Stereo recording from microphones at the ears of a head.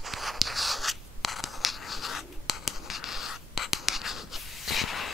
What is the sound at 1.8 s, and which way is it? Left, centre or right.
Writing, left.